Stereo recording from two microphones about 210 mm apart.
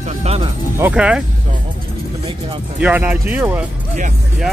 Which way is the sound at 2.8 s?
10° right (ahead or behind).